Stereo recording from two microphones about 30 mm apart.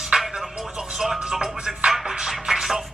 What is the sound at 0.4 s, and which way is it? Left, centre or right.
Music, centre.